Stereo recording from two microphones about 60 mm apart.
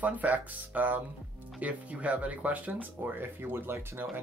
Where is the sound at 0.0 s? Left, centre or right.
Right.